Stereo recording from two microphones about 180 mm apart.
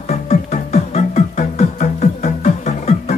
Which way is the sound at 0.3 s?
40° left (ahead or behind).